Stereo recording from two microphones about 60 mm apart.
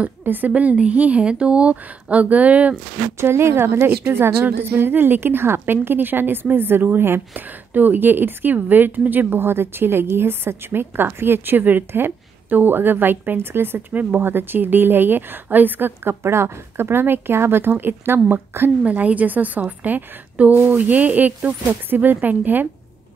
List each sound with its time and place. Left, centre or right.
0.0 s a woman's voice: right
3.2 s a woman's voice: right
16.2 s a woman's voice: right
18.8 s a woman's voice: right